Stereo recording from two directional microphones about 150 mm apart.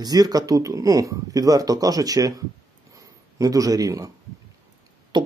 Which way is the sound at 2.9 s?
20° right (ahead or behind).